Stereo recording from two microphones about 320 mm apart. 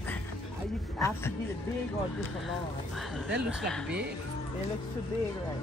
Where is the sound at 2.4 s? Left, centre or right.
Centre.